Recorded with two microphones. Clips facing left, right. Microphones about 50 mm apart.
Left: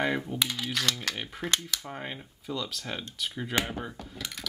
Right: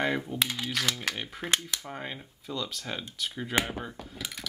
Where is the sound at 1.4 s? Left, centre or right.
Centre.